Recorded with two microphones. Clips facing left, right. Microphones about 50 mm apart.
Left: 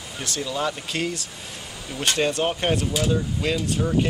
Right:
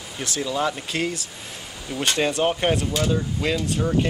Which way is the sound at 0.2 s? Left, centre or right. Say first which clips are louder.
Right 2 dB; centre.